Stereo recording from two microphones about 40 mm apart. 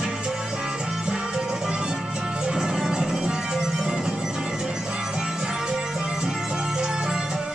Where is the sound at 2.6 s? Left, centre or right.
Centre.